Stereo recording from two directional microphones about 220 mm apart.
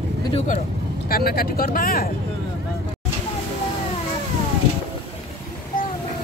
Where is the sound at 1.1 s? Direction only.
45° left (ahead or behind).